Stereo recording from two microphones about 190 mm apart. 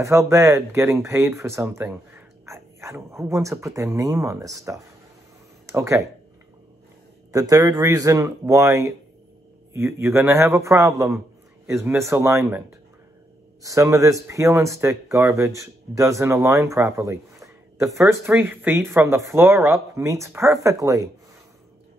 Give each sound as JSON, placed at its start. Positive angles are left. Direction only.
{"t": 0.0, "sound": "speech", "side_deg": -15}
{"t": 7.3, "sound": "speech", "side_deg": -15}